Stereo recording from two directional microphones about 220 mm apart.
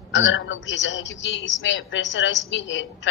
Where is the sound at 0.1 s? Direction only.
55° left (ahead or behind).